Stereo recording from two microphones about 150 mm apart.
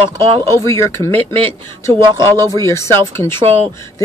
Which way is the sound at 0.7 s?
20° left (ahead or behind).